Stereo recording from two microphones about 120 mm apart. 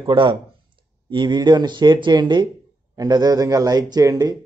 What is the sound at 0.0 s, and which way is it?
Speech, 45° right (ahead or behind).